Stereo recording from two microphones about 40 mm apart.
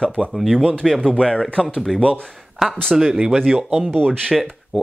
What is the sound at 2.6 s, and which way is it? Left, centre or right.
Speech, centre.